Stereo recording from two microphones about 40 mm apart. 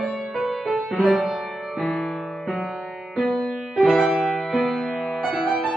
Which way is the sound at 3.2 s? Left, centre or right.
Centre.